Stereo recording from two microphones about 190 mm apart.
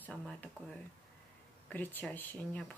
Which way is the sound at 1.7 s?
10° left (ahead or behind).